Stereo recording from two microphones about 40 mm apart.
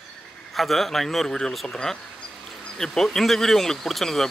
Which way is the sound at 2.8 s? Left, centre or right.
Centre.